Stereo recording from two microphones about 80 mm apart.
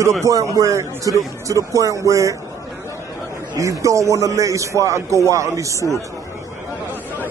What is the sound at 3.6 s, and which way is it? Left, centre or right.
Speech, right.